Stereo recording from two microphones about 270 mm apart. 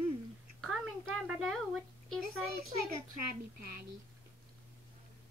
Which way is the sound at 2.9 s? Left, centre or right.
Right.